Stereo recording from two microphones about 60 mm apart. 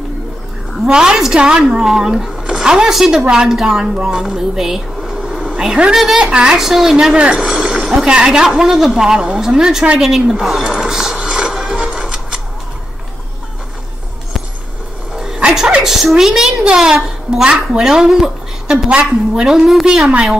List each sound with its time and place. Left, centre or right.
0.8 s speech: centre
9.9 s a sound: centre
15.1 s music: centre
16.6 s speech: centre
20.1 s speech: centre